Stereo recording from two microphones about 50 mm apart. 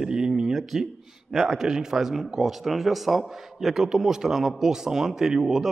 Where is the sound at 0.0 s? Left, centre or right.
Centre.